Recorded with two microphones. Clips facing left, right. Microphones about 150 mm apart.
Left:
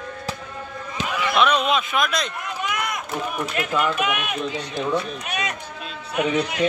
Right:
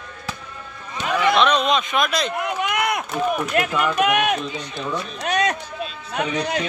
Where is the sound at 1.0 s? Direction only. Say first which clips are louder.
Right 3 dB; 90° left.